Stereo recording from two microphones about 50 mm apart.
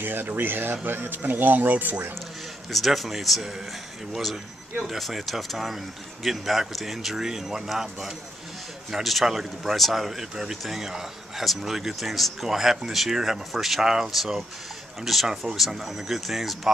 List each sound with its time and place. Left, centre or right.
0.0 s speech: right
2.7 s speech: centre